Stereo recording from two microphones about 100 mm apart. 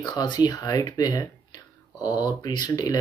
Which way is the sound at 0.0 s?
45° left (ahead or behind).